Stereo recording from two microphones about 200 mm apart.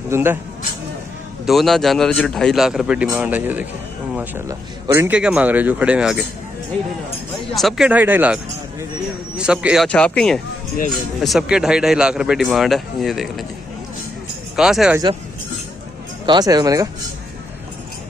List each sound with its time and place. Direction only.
0.1 s speech: 10° right (ahead or behind)
1.4 s a man's voice: centre (ahead or behind)
7.5 s a man's voice: centre (ahead or behind)
9.4 s a man's voice: 5° right (ahead or behind)
14.6 s a man's voice: centre (ahead or behind)
16.3 s speech: 20° right (ahead or behind)